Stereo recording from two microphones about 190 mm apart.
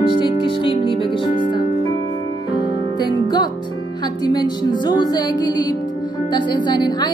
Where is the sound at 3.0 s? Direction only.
20° left (ahead or behind).